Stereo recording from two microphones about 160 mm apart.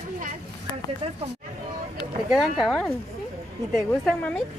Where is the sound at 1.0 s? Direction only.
40° right (ahead or behind).